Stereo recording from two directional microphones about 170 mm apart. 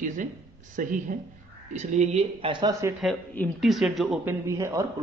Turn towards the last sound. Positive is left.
turn(degrees=-15)  # may be behind; listen again after turning